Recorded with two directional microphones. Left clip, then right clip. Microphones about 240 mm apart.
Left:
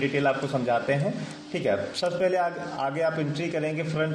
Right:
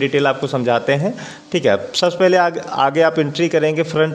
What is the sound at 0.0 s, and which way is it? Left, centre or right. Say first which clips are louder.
A man's voice: right 8 dB; right.